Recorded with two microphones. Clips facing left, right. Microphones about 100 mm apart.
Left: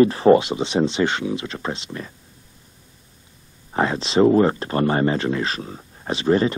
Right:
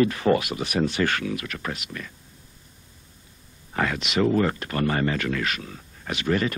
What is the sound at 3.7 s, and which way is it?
Speech, 25° left (ahead or behind).